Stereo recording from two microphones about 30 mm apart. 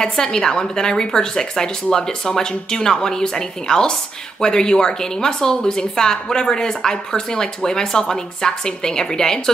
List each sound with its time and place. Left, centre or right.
0.0 s a woman's voice: left